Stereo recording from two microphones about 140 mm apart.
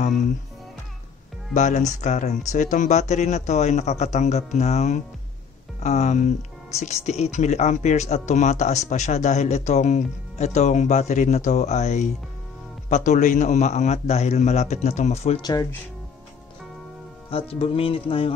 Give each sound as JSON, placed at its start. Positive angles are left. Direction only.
{"t": 1.5, "sound": "speech", "side_deg": 60}
{"t": 17.3, "sound": "speech", "side_deg": 45}